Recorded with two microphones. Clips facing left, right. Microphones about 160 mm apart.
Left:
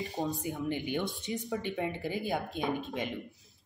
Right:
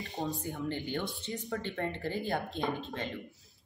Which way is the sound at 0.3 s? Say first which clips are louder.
Left 2 dB; 15° left (ahead or behind).